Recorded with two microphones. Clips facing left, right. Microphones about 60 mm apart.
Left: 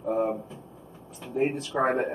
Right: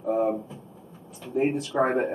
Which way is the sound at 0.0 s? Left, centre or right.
Centre.